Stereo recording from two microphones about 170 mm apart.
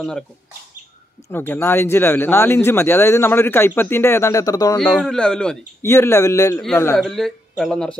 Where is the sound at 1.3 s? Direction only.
15° left (ahead or behind).